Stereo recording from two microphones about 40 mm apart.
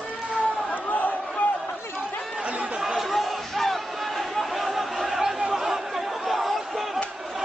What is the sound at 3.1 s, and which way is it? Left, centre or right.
Chatter, centre.